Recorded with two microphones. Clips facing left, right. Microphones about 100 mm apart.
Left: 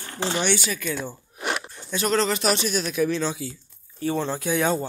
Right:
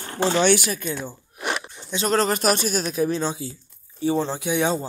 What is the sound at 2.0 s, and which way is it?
Speech, 45° right (ahead or behind).